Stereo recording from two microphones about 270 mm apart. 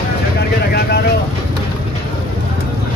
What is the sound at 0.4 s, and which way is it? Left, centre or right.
Vehicle, left.